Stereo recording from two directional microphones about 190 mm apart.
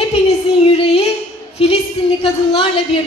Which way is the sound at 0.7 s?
30° left (ahead or behind).